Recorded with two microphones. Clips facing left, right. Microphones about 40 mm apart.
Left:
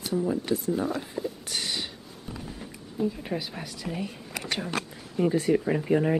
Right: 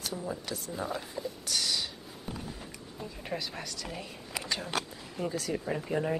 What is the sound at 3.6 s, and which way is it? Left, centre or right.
Speech, centre.